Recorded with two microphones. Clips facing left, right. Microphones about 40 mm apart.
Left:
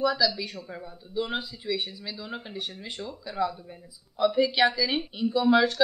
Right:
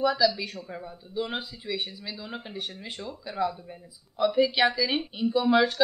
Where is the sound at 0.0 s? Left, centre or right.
Centre.